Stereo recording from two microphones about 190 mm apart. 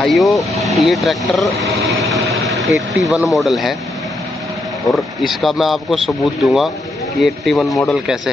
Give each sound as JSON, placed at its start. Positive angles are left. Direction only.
{"t": 0.0, "sound": "speech", "side_deg": 0}
{"t": 1.6, "sound": "vehicle", "side_deg": 0}
{"t": 2.5, "sound": "speech", "side_deg": 0}
{"t": 4.9, "sound": "speech", "side_deg": 0}